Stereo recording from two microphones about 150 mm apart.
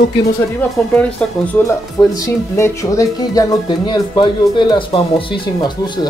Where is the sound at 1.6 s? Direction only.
20° left (ahead or behind).